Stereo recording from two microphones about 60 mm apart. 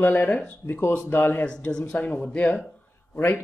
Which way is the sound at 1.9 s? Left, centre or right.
Left.